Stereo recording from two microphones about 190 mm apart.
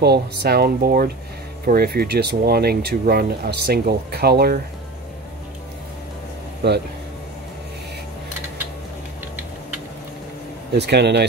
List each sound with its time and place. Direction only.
0.0 s speech: 60° right (ahead or behind)
10.7 s speech: 60° right (ahead or behind)